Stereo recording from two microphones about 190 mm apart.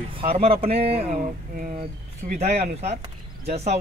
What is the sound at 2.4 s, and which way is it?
Speech, 35° right (ahead or behind).